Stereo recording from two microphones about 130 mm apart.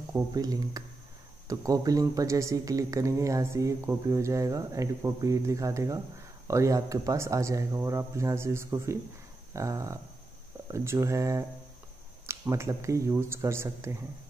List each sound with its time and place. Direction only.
0.3 s speech: 30° right (ahead or behind)